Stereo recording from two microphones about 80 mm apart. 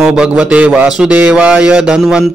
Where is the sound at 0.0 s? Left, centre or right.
Centre.